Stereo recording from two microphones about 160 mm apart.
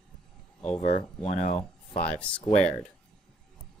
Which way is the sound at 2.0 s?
10° left (ahead or behind).